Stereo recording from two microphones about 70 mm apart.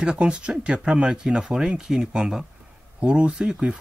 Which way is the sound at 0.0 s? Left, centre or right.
Centre.